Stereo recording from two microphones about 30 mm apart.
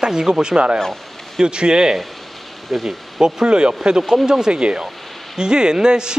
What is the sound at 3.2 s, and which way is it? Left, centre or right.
A man's voice, right.